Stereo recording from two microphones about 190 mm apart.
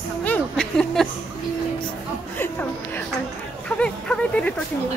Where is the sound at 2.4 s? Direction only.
10° left (ahead or behind).